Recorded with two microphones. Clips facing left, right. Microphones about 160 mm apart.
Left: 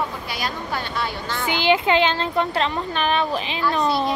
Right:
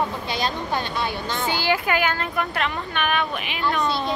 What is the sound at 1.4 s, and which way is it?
Speech, 20° left (ahead or behind).